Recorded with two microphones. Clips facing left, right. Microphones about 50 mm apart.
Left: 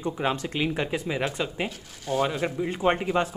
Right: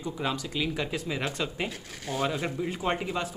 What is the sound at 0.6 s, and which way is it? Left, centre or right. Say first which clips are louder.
Speech: left 5 dB; left.